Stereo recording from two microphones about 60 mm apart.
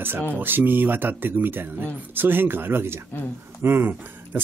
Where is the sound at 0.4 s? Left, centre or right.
Right.